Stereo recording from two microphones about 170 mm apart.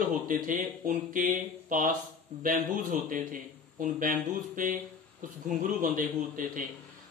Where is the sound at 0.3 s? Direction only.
55° right (ahead or behind).